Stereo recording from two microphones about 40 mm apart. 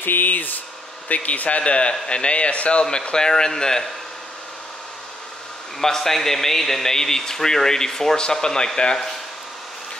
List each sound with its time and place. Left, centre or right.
0.0 s a man's voice: left; by 3.8 s centre
5.8 s speech: centre